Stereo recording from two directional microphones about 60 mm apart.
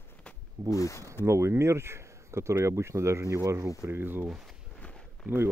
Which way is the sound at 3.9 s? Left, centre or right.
Right.